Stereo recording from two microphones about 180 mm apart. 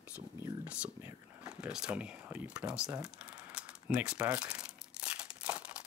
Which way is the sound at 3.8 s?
5° right (ahead or behind).